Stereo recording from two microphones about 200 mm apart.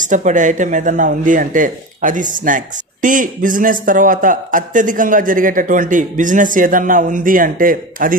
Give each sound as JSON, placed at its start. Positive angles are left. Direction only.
{"t": 0.1, "sound": "speech", "side_deg": -40}